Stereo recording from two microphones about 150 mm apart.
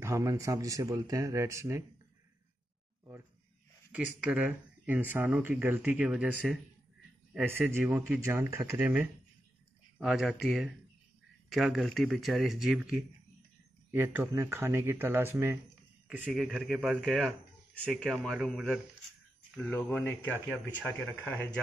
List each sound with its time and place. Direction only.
0.0 s speech: 20° right (ahead or behind)
3.9 s speech: 10° right (ahead or behind); by 21.5 s 10° left (ahead or behind)